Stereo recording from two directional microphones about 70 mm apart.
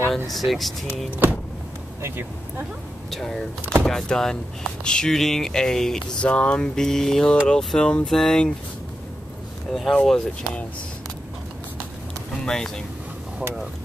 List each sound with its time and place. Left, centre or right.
0.3 s speech: centre
2.0 s speech: right
3.1 s speech: centre
6.2 s speech: centre
9.7 s speech: centre
12.4 s speech: centre